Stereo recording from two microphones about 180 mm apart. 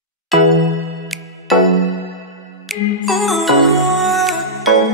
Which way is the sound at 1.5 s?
Centre (ahead or behind).